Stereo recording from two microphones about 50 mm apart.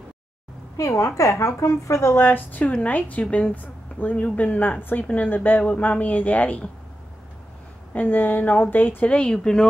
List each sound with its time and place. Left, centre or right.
0.7 s a woman's voice: left
2.1 s a woman's voice: left
3.5 s speech: left
7.9 s speech: left
9.0 s speech: left